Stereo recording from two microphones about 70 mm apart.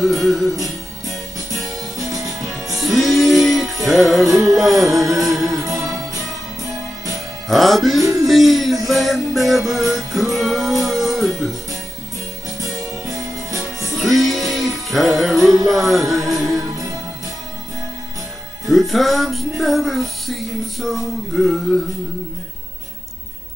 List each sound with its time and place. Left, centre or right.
0.0 s music: centre
2.0 s music: right
2.8 s music: centre
5.7 s music: right
7.4 s music: centre
8.0 s music: right
8.3 s music: centre
12.5 s music: right
13.9 s music: centre
18.7 s music: centre